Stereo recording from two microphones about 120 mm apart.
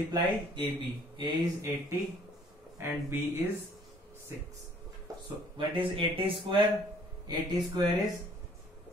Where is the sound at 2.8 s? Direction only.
20° right (ahead or behind).